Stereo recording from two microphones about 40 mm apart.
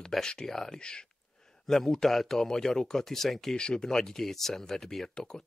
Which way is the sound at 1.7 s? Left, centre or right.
Centre.